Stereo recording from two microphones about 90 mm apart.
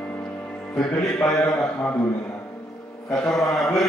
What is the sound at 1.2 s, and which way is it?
Speech, 30° left (ahead or behind).